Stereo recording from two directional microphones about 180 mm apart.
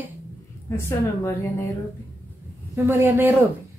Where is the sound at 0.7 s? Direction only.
15° left (ahead or behind).